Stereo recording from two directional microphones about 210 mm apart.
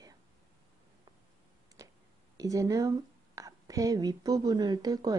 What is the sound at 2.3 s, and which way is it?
A woman's voice, 15° right (ahead or behind).